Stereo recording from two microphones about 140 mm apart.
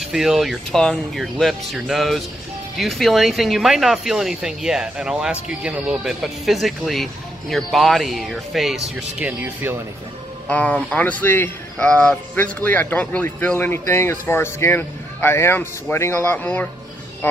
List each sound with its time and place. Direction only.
0.0 s speech: 5° right (ahead or behind)
9.2 s speech: 15° right (ahead or behind)
10.5 s speech: 10° left (ahead or behind)